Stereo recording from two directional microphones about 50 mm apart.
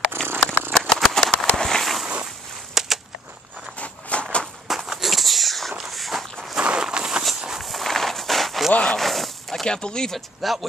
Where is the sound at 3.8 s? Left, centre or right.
Left.